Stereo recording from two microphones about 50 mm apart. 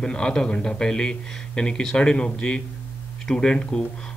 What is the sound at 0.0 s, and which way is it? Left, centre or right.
Speech, centre.